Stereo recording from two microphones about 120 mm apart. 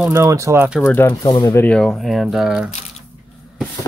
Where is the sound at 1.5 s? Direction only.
15° left (ahead or behind).